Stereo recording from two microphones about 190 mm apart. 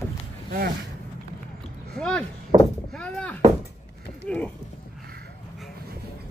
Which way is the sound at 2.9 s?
5° left (ahead or behind).